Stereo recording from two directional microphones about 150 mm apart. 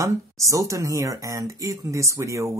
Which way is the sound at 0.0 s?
20° right (ahead or behind).